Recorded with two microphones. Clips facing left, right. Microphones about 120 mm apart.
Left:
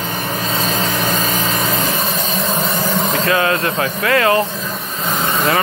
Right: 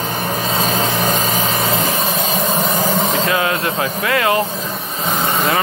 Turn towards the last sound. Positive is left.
turn(degrees=-15)  # may be behind; listen again after turning